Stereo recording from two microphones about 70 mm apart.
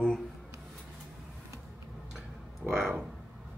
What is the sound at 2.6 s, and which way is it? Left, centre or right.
Speech, centre.